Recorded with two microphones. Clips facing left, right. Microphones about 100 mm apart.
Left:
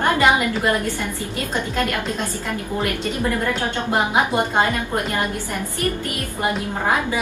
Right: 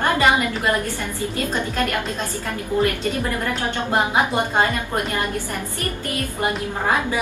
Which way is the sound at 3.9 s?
20° left (ahead or behind).